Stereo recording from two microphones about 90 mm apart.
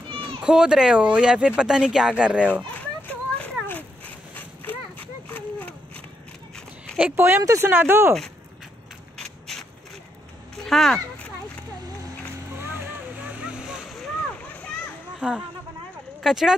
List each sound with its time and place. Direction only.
0.4 s speech: 10° right (ahead or behind)
3.0 s a sound: 20° left (ahead or behind)
7.2 s speech: 25° right (ahead or behind)
9.2 s mechanisms: 5° left (ahead or behind)
10.5 s a sound: 5° left (ahead or behind)
12.5 s vehicle: 25° right (ahead or behind)
13.4 s a sound: 10° right (ahead or behind)
14.4 s splash: 15° left (ahead or behind)
15.1 s speech: 10° right (ahead or behind)